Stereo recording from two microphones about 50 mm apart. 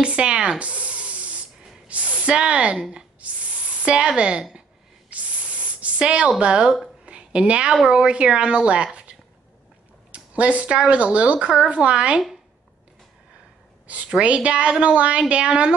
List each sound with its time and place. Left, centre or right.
0.0 s spray: right
4.1 s a woman's voice: centre
5.1 s a sound: right
6.4 s a woman's voice: centre
7.1 s a sound: right
7.9 s speech: centre
10.1 s speech: right
13.8 s speech: right